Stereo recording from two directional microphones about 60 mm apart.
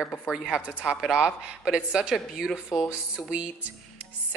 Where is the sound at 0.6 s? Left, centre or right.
Centre.